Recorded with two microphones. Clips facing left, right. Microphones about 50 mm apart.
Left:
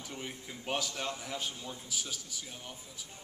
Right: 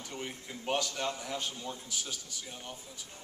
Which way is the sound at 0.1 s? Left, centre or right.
Centre.